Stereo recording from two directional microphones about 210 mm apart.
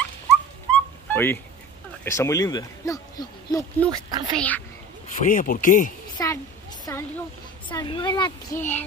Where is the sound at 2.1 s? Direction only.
15° left (ahead or behind).